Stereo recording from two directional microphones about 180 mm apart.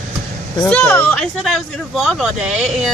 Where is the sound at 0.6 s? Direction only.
5° left (ahead or behind).